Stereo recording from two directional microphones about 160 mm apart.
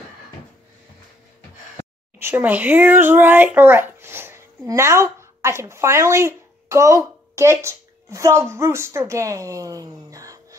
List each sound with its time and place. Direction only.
2.1 s a child's voice: 15° right (ahead or behind)